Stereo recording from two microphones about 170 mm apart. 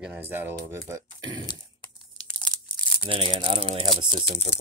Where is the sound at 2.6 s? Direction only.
30° right (ahead or behind).